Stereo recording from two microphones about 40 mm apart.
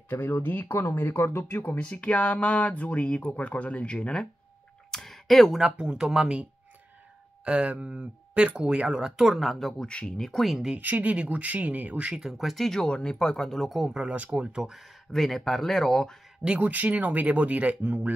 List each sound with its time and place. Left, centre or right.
0.1 s speech: left
1.8 s speech: left
4.9 s a sound: centre
5.6 s speech: right
7.4 s speech: right; by 9.8 s centre
9.8 s speech: left
10.1 s speech: centre
10.8 s speech: right
12.1 s speech: centre
12.4 s speech: centre
12.8 s speech: centre
13.8 s speech: right
14.6 s speech: centre
16.5 s speech: right